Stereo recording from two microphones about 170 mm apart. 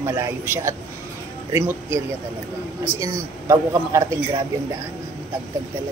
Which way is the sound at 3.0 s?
20° right (ahead or behind).